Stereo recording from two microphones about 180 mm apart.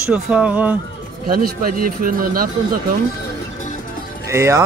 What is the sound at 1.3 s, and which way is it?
Speech, 55° right (ahead or behind).